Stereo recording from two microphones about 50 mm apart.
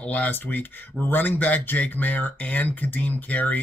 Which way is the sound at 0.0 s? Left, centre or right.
Left.